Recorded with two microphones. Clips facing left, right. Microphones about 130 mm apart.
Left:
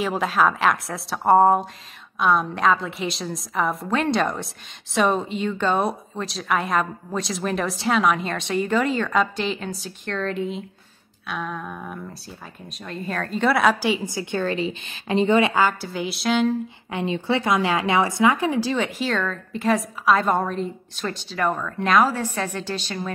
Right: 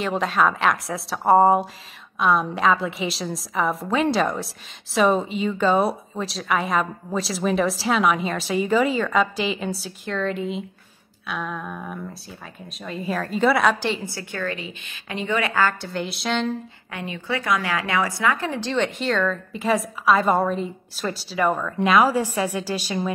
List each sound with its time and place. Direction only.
0.0 s a woman's voice: centre (ahead or behind)
14.4 s a woman's voice: 30° left (ahead or behind)
15.8 s a woman's voice: 5° left (ahead or behind)
16.9 s a woman's voice: 25° left (ahead or behind); by 22.9 s 10° right (ahead or behind)